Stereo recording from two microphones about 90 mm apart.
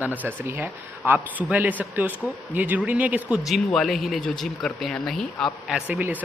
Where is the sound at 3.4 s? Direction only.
Centre (ahead or behind).